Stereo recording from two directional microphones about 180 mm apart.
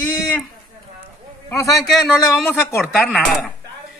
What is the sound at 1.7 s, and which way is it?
Speech, centre (ahead or behind).